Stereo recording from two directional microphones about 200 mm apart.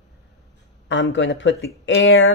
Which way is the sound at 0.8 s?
70° left (ahead or behind).